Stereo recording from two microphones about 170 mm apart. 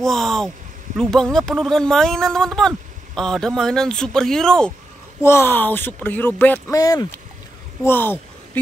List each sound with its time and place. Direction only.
0.0 s speech: 5° left (ahead or behind)
5.2 s speech: 15° left (ahead or behind)
6.8 s speech: 20° left (ahead or behind)